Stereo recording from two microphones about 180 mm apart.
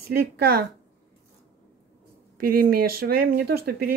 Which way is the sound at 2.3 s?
55° right (ahead or behind).